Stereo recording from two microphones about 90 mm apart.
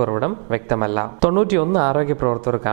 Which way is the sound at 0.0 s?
20° right (ahead or behind).